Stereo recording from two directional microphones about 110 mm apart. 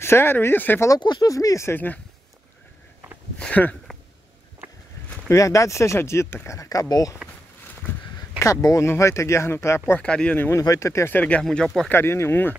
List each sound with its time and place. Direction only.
0.0 s speech: 20° left (ahead or behind)
0.8 s speech: 40° left (ahead or behind); by 2.0 s 20° left (ahead or behind)
3.3 s speech: 10° left (ahead or behind)
5.3 s speech: 30° left (ahead or behind)
8.4 s speech: 30° left (ahead or behind); by 10.6 s 15° left (ahead or behind)
10.6 s speech: 30° left (ahead or behind); by 11.9 s 5° left (ahead or behind)
11.9 s speech: 25° left (ahead or behind)